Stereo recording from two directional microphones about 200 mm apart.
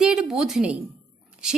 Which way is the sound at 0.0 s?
5° right (ahead or behind).